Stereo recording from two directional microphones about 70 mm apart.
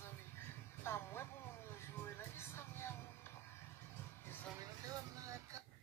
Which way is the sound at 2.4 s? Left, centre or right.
Left.